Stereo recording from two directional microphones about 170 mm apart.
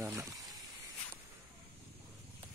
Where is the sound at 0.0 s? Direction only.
15° right (ahead or behind).